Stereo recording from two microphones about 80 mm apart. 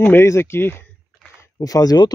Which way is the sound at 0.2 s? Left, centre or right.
Left.